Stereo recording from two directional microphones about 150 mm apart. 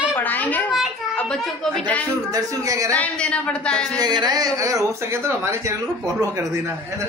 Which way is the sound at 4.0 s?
25° right (ahead or behind).